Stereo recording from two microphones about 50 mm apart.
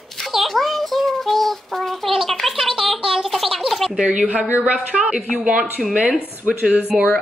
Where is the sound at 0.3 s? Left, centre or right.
Centre.